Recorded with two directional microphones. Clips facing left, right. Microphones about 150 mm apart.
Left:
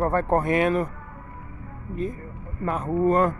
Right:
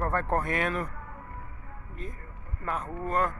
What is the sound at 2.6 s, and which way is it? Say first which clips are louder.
Speech: left 10 dB; 20° left (ahead or behind).